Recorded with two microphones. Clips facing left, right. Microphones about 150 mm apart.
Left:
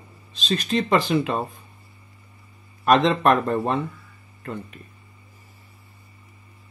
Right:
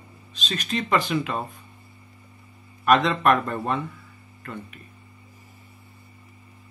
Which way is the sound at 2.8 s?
30° left (ahead or behind).